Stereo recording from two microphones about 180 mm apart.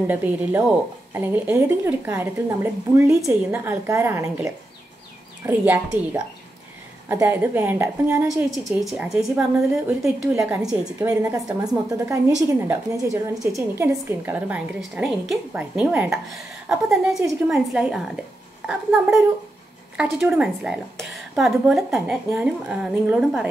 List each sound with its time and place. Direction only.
0.0 s a woman's voice: 10° right (ahead or behind)
8.5 s a woman's voice: 5° right (ahead or behind)
11.0 s a woman's voice: 20° right (ahead or behind)